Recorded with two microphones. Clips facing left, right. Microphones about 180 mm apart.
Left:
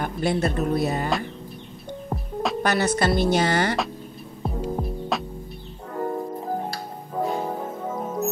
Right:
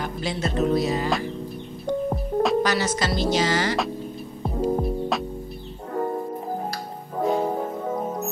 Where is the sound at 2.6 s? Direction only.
60° left (ahead or behind).